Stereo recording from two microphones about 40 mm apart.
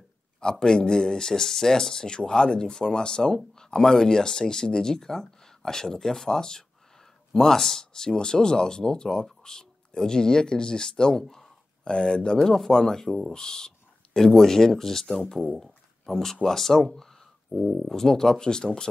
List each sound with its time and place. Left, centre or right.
0.4 s speech: centre
12.4 s speech: centre
13.3 s speech: centre
15.5 s a sound: centre
16.4 s speech: centre